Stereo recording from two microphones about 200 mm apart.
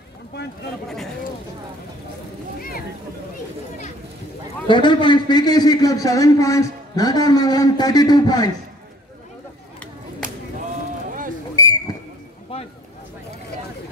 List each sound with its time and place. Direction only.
4.6 s a man's voice: 25° left (ahead or behind)
11.6 s whistle: 15° left (ahead or behind)
12.5 s a sound: 25° left (ahead or behind)